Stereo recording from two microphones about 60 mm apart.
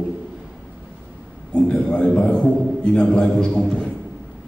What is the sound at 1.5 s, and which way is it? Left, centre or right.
A man's voice, centre.